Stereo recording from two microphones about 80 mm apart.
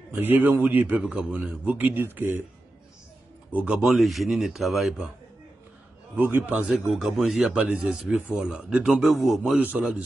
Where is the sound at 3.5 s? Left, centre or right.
Centre.